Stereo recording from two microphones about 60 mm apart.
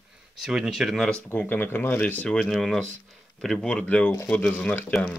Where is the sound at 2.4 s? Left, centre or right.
Centre.